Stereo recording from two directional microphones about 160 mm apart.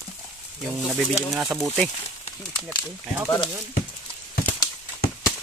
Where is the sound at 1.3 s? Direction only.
Centre (ahead or behind).